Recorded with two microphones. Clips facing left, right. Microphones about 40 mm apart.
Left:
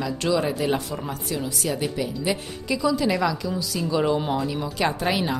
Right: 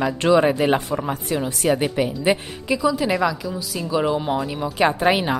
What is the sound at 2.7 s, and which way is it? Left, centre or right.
A woman's voice, centre.